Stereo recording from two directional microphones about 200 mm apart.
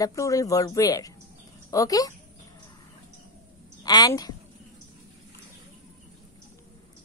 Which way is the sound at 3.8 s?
20° left (ahead or behind).